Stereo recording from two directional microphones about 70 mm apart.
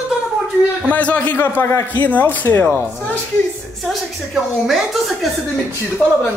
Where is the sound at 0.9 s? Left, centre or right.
Left.